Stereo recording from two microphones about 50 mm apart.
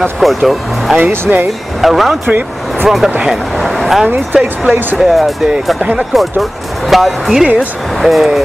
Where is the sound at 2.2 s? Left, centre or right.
Right.